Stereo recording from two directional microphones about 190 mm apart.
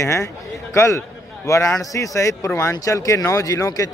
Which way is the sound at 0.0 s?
15° left (ahead or behind).